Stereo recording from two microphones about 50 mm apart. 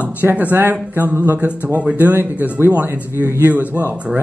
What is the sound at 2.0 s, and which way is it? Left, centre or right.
A man's voice, right.